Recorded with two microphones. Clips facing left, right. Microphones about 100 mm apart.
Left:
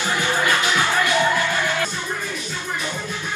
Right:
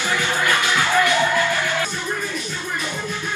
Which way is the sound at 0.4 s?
20° left (ahead or behind).